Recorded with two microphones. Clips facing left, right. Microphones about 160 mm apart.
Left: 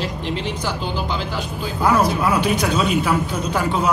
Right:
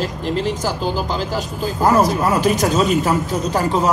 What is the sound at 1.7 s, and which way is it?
Speech, 40° right (ahead or behind).